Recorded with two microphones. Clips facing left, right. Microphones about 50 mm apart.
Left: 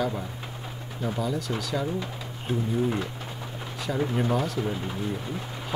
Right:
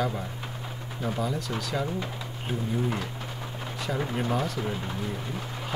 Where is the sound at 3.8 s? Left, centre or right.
Centre.